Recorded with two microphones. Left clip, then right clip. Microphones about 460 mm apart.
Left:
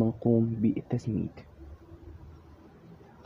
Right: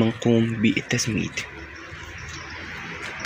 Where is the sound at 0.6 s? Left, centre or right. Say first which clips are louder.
Right 9 dB; left.